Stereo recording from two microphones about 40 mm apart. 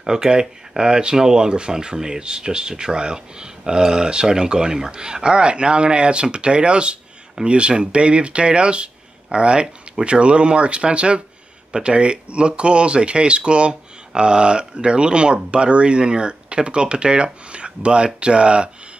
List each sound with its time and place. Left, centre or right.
0.0 s speech: centre